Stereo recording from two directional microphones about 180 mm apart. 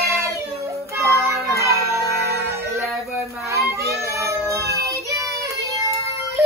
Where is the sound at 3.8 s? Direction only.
15° right (ahead or behind).